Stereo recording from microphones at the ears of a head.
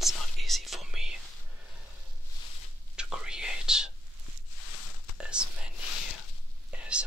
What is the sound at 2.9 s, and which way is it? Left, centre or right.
Whispering, centre.